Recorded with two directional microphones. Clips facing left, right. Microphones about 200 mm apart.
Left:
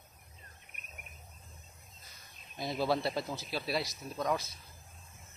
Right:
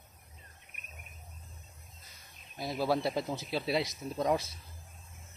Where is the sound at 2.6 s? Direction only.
10° right (ahead or behind); by 4.4 s 25° right (ahead or behind).